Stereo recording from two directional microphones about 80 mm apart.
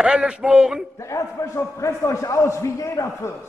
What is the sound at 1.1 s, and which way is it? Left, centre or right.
A man's voice, left.